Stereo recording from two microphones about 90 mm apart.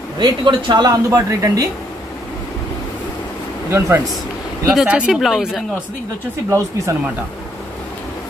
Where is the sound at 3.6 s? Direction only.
30° right (ahead or behind).